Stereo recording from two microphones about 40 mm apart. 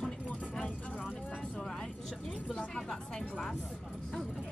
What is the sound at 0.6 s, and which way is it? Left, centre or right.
Vehicle, left.